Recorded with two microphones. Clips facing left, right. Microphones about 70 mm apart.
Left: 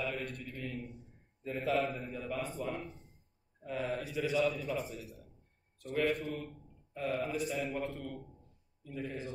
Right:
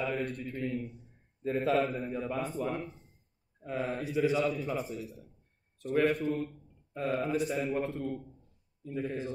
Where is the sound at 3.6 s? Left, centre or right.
Right.